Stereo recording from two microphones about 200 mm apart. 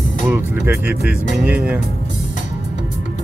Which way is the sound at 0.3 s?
10° right (ahead or behind).